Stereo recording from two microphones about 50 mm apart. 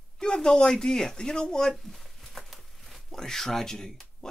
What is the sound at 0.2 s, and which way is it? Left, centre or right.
Speech, centre.